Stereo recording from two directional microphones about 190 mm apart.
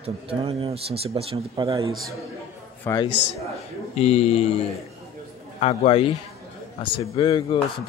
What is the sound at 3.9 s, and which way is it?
Speech, 35° left (ahead or behind).